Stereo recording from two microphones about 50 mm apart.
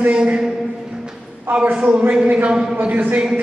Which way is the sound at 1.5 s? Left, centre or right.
Right.